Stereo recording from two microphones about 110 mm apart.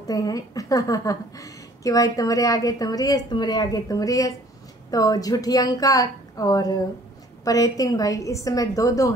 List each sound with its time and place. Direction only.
0.0 s a woman's voice: 35° left (ahead or behind)